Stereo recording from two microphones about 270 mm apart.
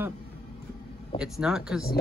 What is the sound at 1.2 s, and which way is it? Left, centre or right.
Speech, centre.